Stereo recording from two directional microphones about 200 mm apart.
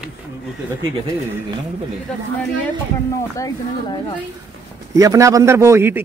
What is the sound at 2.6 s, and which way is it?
Speech, 15° left (ahead or behind).